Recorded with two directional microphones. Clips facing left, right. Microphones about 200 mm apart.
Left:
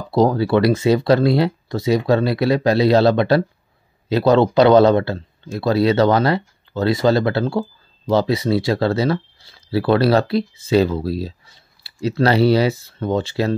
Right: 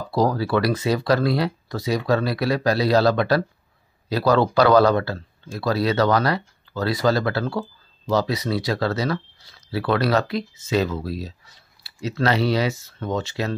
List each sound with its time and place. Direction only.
0.1 s speech: 25° left (ahead or behind)